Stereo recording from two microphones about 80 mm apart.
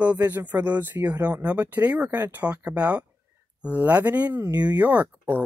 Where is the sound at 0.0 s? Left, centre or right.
Centre.